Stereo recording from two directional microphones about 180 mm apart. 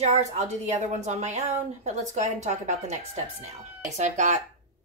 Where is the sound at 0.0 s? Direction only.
40° right (ahead or behind).